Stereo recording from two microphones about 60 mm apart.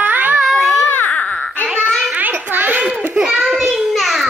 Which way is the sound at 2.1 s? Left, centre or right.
Right.